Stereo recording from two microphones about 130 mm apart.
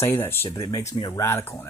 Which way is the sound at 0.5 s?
30° left (ahead or behind).